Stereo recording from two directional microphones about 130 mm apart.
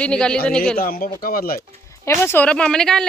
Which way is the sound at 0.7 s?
90° left.